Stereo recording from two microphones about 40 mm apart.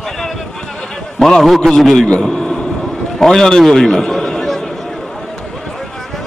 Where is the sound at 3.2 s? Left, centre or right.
Centre.